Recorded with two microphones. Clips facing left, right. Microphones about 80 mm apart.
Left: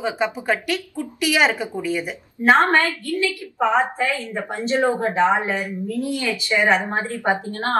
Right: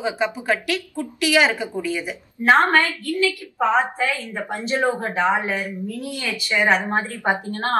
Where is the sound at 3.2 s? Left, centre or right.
Left.